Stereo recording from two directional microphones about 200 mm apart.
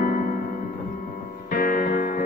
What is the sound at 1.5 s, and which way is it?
Music, 45° left (ahead or behind).